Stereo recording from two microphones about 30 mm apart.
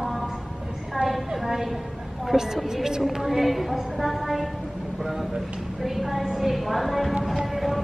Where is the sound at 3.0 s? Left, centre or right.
Centre.